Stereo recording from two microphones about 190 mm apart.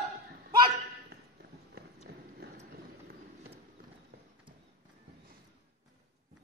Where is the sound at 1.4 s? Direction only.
50° right (ahead or behind).